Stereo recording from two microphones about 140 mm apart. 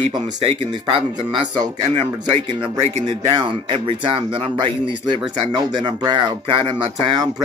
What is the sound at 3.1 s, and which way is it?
Speech, 35° right (ahead or behind).